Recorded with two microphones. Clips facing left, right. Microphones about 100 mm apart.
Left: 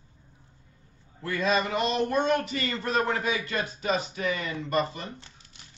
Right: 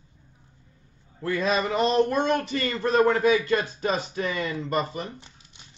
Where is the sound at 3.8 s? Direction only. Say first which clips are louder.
Right 2 dB; 40° right (ahead or behind).